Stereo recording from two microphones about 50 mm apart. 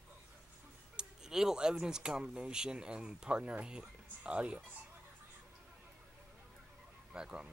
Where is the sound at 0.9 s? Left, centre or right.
Centre.